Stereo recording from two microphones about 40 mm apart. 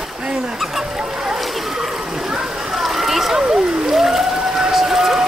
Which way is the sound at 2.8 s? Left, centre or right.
Centre.